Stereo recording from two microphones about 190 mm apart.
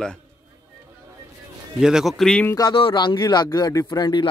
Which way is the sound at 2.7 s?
25° left (ahead or behind).